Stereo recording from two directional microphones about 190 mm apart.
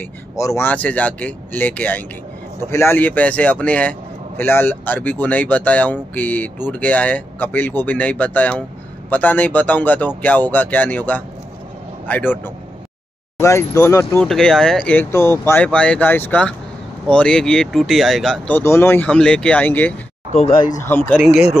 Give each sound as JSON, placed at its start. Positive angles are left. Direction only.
{"t": 0.0, "sound": "speech", "side_deg": 15}
{"t": 14.1, "sound": "speech", "side_deg": 5}
{"t": 18.6, "sound": "speech", "side_deg": 15}
{"t": 20.3, "sound": "speech", "side_deg": 30}
{"t": 20.8, "sound": "speech", "side_deg": 10}
{"t": 21.2, "sound": "speech", "side_deg": 0}